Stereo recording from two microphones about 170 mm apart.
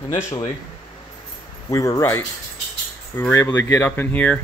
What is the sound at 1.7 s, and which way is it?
Speech, 15° left (ahead or behind).